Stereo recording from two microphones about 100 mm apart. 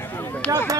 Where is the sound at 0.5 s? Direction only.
35° right (ahead or behind).